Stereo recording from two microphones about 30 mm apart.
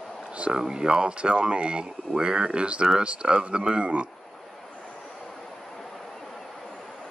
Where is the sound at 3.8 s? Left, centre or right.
Right.